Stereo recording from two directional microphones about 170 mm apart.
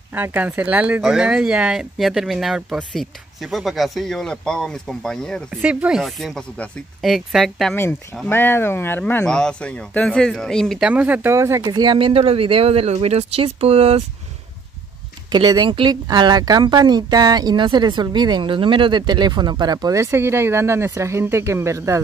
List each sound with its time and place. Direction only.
0.1 s speech: 10° right (ahead or behind)
5.5 s speech: 10° right (ahead or behind)
8.3 s speech: 15° left (ahead or behind)
10.9 s speech: 10° right (ahead or behind); by 14.0 s 35° right (ahead or behind)
15.3 s speech: 25° right (ahead or behind)